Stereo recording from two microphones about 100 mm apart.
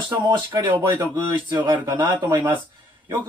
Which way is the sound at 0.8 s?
25° right (ahead or behind).